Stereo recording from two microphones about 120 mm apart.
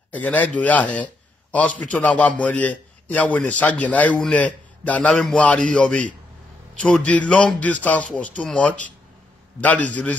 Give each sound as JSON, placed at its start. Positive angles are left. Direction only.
{"t": 0.1, "sound": "a man's voice", "side_deg": 15}